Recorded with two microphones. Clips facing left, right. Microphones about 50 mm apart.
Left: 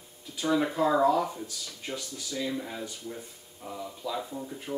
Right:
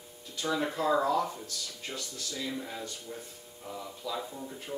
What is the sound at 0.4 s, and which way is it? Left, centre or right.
Speech, centre.